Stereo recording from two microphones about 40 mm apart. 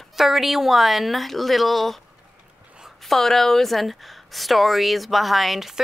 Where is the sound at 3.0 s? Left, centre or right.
Centre.